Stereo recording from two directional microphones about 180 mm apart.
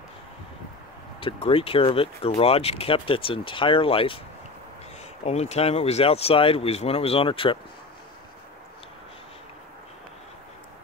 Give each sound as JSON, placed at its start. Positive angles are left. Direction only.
{"t": 1.2, "sound": "speech", "side_deg": 30}
{"t": 5.2, "sound": "speech", "side_deg": 35}